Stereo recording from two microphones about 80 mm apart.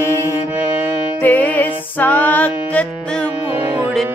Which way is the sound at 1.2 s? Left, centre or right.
Left.